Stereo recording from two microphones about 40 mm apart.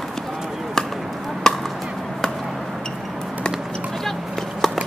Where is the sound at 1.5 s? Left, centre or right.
Centre.